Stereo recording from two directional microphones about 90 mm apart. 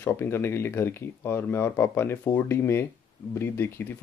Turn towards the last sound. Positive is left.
turn(degrees=25)  # may be behind; listen again after turning